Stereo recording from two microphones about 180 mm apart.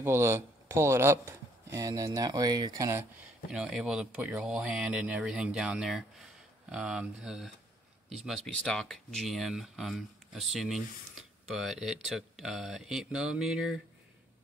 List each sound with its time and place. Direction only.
0.0 s speech: 15° right (ahead or behind)
3.4 s speech: 5° right (ahead or behind)